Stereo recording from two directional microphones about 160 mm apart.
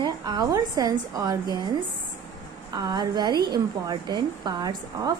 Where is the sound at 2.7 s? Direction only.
25° right (ahead or behind).